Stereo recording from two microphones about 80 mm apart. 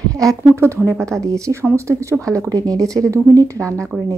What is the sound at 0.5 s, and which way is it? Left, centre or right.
Speech, right.